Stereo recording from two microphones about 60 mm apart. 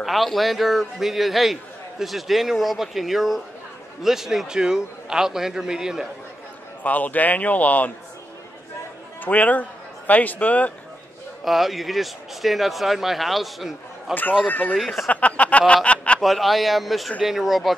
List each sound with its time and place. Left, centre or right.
0.0 s a man's voice: centre
6.8 s a man's voice: left
9.2 s a man's voice: left
11.4 s a man's voice: centre
14.5 s a man's voice: left
14.8 s a man's voice: centre
15.0 s a man's voice: left
15.6 s a sound: centre
16.2 s a man's voice: centre